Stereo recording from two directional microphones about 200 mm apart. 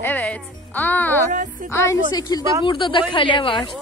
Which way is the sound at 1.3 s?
40° right (ahead or behind).